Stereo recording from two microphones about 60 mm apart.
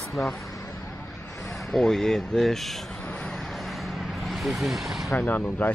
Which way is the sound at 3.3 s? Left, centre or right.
Centre.